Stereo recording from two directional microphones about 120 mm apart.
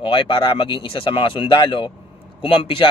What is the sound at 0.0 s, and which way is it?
Speech, 45° left (ahead or behind).